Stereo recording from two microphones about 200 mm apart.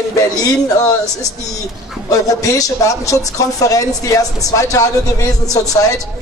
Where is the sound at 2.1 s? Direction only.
15° left (ahead or behind).